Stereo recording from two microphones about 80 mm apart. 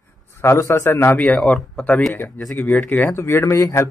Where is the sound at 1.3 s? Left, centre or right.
Centre.